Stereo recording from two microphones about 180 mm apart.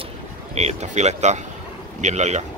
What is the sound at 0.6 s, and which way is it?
A man's voice, 40° right (ahead or behind).